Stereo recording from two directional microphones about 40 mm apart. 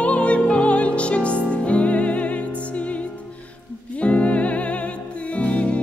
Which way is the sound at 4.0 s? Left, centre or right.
Left.